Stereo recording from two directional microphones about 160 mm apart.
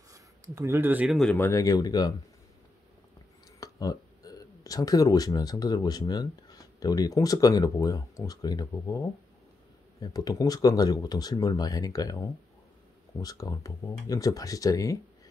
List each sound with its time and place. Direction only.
0.1 s speech: 20° right (ahead or behind)
1.1 s speech: 10° left (ahead or behind); by 2.1 s 25° left (ahead or behind)
3.5 s speech: 20° left (ahead or behind)